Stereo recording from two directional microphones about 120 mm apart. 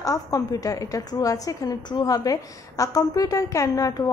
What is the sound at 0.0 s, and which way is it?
A woman's voice, 30° left (ahead or behind).